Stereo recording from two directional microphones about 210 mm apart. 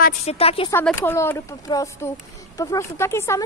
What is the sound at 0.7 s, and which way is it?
Speech, 10° left (ahead or behind).